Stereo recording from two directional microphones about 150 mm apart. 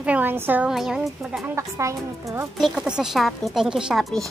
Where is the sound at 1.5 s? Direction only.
20° right (ahead or behind).